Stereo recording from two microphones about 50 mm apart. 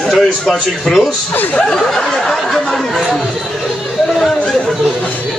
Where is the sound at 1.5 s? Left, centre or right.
Centre.